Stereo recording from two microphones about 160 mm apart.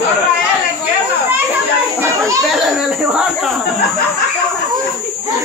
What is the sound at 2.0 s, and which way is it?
Speech, 20° right (ahead or behind).